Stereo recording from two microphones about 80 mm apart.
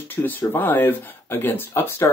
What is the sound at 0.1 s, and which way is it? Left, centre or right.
Speech, left.